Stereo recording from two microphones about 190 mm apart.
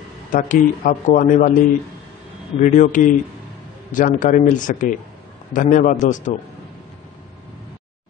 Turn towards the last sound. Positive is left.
turn(degrees=40)  # may be behind; listen again after turning